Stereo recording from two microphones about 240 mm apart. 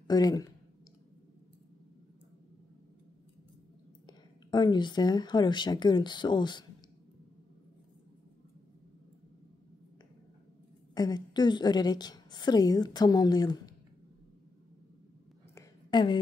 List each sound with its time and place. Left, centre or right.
0.0 s speech: centre
4.5 s a woman's voice: centre
11.0 s a woman's voice: centre
15.5 s a sound: centre